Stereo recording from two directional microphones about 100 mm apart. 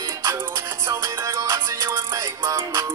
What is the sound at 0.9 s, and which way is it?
Music, 30° right (ahead or behind).